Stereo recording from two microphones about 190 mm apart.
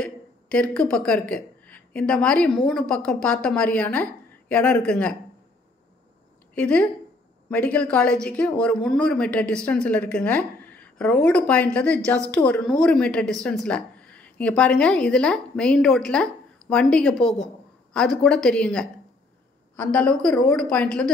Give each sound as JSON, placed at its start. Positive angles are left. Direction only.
{"t": 0.0, "sound": "speech", "side_deg": 5}
{"t": 6.5, "sound": "a woman's voice", "side_deg": 5}